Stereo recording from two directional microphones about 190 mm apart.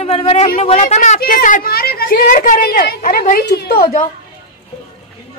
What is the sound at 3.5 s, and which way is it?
Speech, 60° left (ahead or behind).